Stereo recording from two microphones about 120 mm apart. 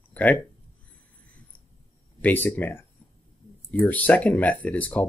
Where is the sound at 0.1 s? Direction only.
15° left (ahead or behind).